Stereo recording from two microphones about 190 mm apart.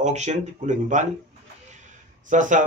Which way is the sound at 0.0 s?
35° right (ahead or behind).